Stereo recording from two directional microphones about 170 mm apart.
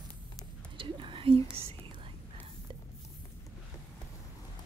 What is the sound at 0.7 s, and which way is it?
Whispering, 30° right (ahead or behind).